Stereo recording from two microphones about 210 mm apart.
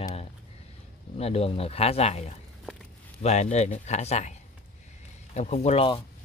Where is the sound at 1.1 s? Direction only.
30° left (ahead or behind).